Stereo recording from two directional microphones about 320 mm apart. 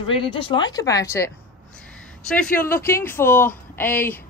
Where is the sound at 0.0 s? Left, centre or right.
Centre.